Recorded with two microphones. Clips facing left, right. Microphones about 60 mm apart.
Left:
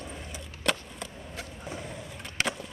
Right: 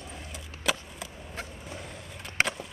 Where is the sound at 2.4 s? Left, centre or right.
Right.